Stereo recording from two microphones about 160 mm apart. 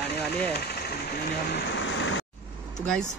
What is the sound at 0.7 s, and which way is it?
Speech, 85° left.